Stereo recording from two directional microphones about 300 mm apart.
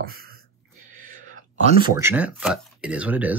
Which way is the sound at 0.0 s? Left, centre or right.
Right.